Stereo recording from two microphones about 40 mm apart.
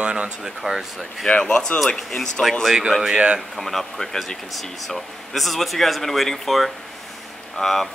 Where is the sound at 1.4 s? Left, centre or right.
Centre.